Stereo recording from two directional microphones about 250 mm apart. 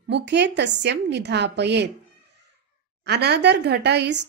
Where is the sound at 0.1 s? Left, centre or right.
Right.